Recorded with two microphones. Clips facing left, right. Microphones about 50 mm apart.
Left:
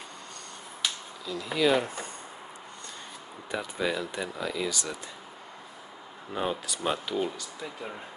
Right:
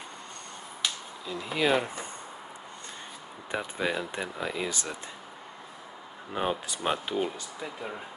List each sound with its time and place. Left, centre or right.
1.2 s speech: right
3.5 s speech: right
6.3 s speech: right